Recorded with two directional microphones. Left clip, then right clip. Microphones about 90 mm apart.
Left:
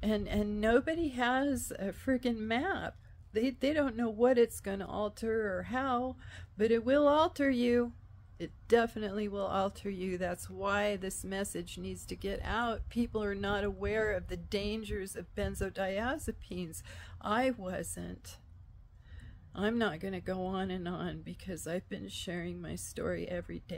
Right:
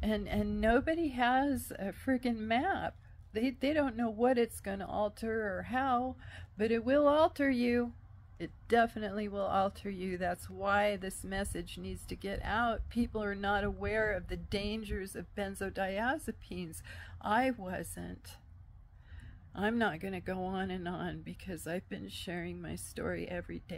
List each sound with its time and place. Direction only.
0.0 s speech: 25° left (ahead or behind)
19.7 s speech: 30° left (ahead or behind)